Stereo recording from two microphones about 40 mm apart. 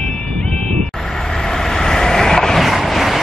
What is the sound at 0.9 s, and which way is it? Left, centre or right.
Vehicle, centre.